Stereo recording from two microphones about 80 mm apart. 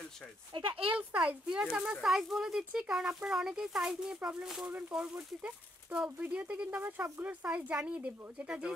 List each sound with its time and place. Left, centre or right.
0.5 s speech: right
1.1 s speech: centre